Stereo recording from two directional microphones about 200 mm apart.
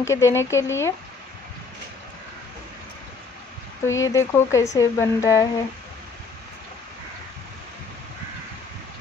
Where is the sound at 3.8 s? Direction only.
75° left (ahead or behind).